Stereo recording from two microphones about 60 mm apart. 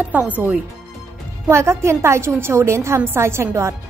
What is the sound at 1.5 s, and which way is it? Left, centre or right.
Speech, right.